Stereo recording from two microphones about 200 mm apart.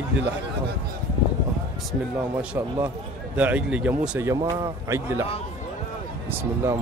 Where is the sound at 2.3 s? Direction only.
10° right (ahead or behind).